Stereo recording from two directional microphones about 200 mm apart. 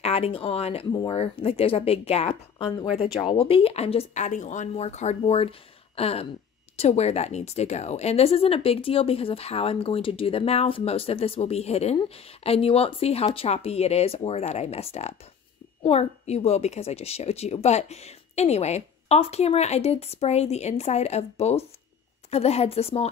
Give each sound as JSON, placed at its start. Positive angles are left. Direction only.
{"t": 0.0, "sound": "speech", "side_deg": 30}
{"t": 5.9, "sound": "a sound", "side_deg": 30}
{"t": 6.8, "sound": "speech", "side_deg": 30}